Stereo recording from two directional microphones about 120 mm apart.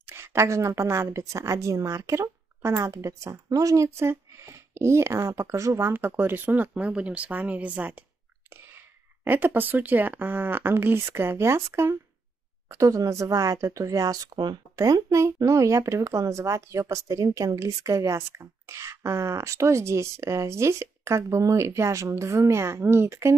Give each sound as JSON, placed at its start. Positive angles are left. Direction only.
{"t": 0.0, "sound": "speech", "side_deg": -20}